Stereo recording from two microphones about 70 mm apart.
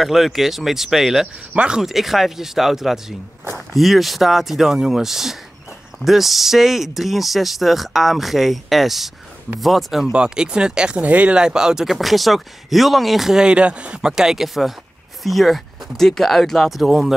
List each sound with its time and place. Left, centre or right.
0.0 s speech: centre
1.5 s speech: centre
1.8 s speech: centre
10.1 s speech: centre